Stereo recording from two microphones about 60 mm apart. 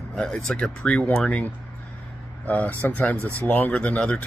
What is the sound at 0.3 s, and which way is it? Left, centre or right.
Speech, centre.